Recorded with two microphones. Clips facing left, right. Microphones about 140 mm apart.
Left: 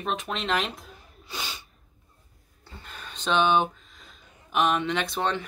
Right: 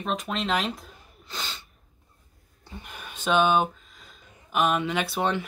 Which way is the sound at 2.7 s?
15° right (ahead or behind).